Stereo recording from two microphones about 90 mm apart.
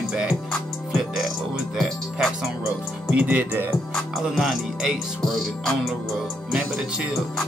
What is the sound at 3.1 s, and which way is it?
Music, 15° right (ahead or behind).